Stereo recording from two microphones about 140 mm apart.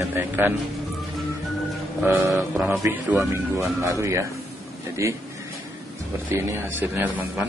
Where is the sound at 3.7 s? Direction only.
20° right (ahead or behind).